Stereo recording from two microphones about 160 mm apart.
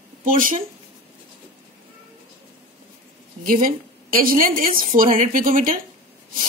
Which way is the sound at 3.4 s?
60° right (ahead or behind).